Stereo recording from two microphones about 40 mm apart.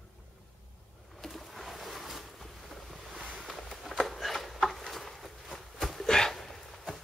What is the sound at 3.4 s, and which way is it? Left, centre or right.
Walk, centre.